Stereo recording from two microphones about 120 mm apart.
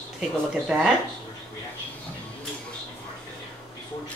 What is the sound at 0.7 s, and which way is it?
Speech, 5° right (ahead or behind).